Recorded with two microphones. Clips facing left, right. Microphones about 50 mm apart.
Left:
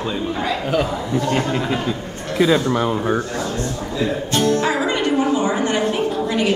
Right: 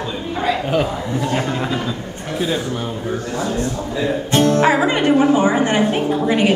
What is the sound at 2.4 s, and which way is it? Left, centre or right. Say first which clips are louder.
Speech: left 6 dB; left.